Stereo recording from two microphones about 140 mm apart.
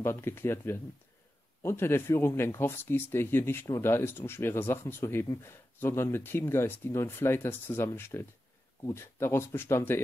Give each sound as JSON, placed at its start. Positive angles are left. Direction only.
{"t": 0.0, "sound": "speech", "side_deg": 15}